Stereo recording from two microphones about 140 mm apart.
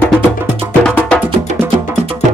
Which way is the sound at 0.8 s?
5° left (ahead or behind).